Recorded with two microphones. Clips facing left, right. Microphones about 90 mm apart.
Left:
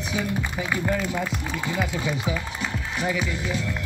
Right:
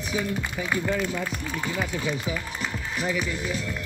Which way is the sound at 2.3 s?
Centre (ahead or behind).